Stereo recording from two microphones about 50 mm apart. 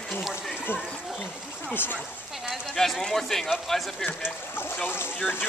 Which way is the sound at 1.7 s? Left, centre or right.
Left.